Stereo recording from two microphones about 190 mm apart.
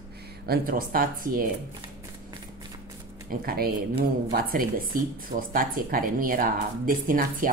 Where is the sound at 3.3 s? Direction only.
50° right (ahead or behind).